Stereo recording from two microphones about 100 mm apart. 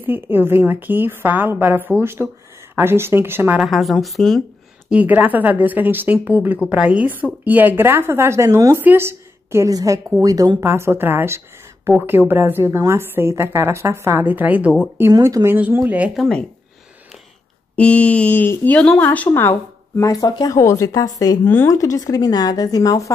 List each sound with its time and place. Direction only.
0.0 s a woman's voice: 20° right (ahead or behind)
3.5 s a woman's voice: centre (ahead or behind)
4.8 s a woman's voice: 15° right (ahead or behind); by 10.6 s 40° right (ahead or behind)
10.6 s a woman's voice: 25° right (ahead or behind)
15.1 s speech: 35° right (ahead or behind)
15.4 s a woman's voice: 20° right (ahead or behind)
16.2 s mantra: 10° left (ahead or behind)
17.7 s mantra: 15° left (ahead or behind)
19.0 s a woman's voice: 15° left (ahead or behind)
20.0 s speech: 40° left (ahead or behind)
21.5 s a woman's voice: 20° left (ahead or behind)
21.7 s speech: 35° left (ahead or behind)